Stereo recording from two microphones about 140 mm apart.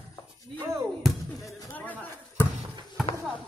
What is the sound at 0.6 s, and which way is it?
Music, 20° right (ahead or behind).